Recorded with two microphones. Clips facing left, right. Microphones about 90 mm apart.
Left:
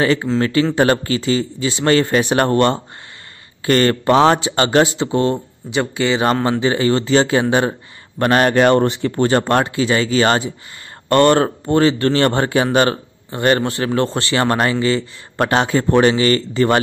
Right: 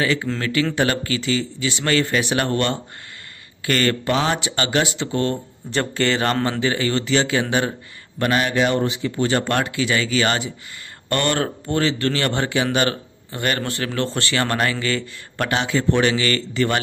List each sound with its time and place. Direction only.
0.0 s a man's voice: 35° left (ahead or behind)
5.7 s speech: 10° left (ahead or behind)
6.6 s a man's voice: 30° left (ahead or behind)
8.2 s speech: 45° left (ahead or behind)
9.3 s a man's voice: 35° left (ahead or behind)